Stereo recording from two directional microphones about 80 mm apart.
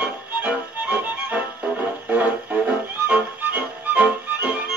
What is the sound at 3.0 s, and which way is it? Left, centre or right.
Music, right.